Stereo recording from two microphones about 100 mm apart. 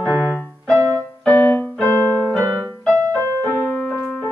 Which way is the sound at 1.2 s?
10° left (ahead or behind).